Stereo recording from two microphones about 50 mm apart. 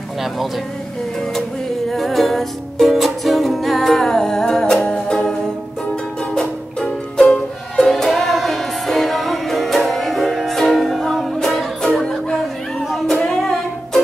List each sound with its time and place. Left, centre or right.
1.9 s music: centre
4.8 s music: left
6.3 s music: centre
11.3 s music: centre
12.9 s child singing: centre
13.2 s music: centre